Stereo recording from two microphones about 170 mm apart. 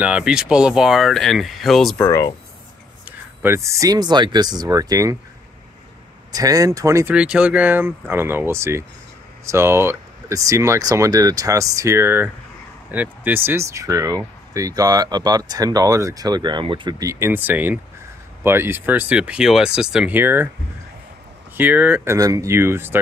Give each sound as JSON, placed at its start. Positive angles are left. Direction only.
{"t": 0.0, "sound": "speech", "side_deg": -5}
{"t": 2.0, "sound": "speech", "side_deg": 15}
{"t": 3.1, "sound": "speech", "side_deg": -15}
{"t": 6.3, "sound": "speech", "side_deg": -20}
{"t": 7.2, "sound": "speech", "side_deg": -5}
{"t": 21.5, "sound": "speech", "side_deg": -10}